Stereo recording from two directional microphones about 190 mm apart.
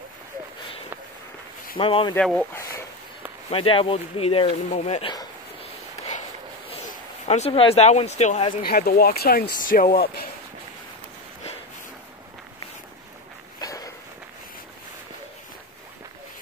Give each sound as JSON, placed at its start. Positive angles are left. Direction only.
{"t": 1.8, "sound": "speech", "side_deg": 30}
{"t": 2.1, "sound": "speech", "side_deg": 5}
{"t": 3.4, "sound": "speech", "side_deg": 30}
{"t": 7.2, "sound": "speech", "side_deg": 35}
{"t": 8.6, "sound": "speech", "side_deg": 50}
{"t": 13.6, "sound": "walk", "side_deg": 20}